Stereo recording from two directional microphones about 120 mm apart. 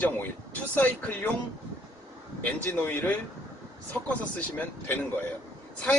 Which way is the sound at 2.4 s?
15° left (ahead or behind).